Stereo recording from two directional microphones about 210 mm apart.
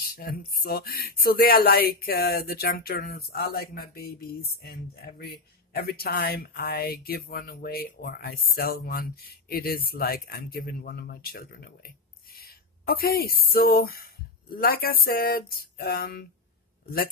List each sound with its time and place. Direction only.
0.0 s speech: 45° left (ahead or behind)